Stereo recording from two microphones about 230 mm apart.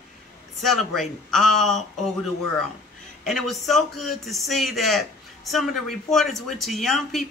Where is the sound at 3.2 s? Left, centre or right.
Centre.